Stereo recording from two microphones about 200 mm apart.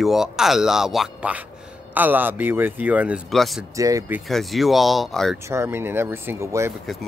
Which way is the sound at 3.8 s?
15° right (ahead or behind).